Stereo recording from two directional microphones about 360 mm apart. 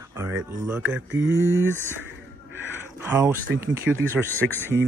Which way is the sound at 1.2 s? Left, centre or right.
Right.